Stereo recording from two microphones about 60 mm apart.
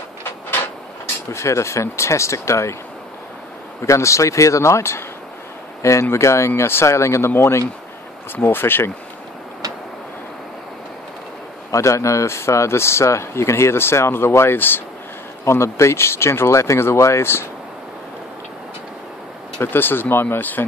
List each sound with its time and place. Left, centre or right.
1.3 s speech: left
3.8 s speech: left
11.7 s speech: left
15.4 s speech: left
19.6 s speech: left